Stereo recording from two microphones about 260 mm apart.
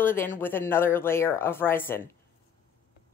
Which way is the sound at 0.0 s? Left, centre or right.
Centre.